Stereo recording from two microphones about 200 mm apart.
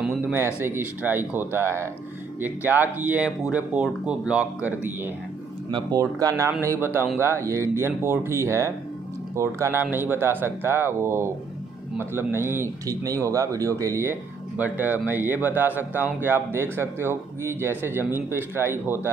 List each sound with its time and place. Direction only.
0.0 s a sound: 5° right (ahead or behind)
0.6 s speech: 10° right (ahead or behind)
5.7 s speech: 20° right (ahead or behind)